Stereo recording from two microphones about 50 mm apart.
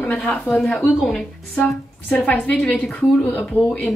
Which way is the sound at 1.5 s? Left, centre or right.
Left.